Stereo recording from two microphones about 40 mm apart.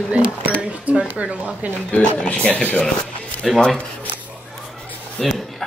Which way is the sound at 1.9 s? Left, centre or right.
Left.